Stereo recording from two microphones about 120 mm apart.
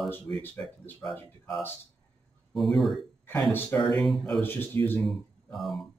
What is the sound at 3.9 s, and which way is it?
Speech, 5° left (ahead or behind).